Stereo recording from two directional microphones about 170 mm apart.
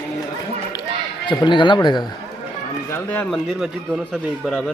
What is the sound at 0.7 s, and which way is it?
Run, 25° left (ahead or behind).